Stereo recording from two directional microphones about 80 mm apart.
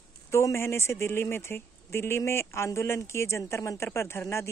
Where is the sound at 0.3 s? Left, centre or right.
Left.